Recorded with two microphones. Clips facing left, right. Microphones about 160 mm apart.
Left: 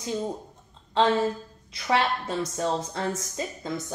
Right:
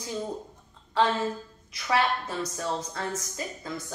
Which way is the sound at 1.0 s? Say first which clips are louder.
Left 3 dB; 25° left (ahead or behind).